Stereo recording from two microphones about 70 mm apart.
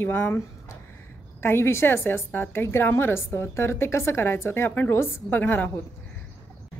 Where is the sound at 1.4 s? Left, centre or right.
Left.